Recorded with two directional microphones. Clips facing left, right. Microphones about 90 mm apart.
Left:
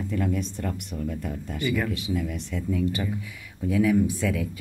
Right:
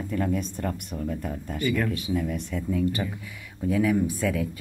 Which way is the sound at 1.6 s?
5° left (ahead or behind).